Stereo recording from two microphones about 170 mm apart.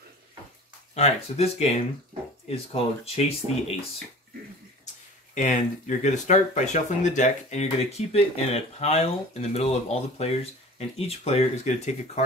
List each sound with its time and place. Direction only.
0.9 s speech: 40° left (ahead or behind)
5.3 s speech: 45° left (ahead or behind)